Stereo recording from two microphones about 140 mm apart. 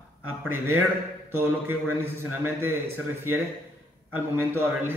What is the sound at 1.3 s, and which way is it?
A man's voice, 15° right (ahead or behind).